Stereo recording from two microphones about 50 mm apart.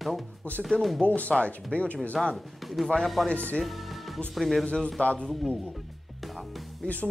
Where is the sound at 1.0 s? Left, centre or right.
Left.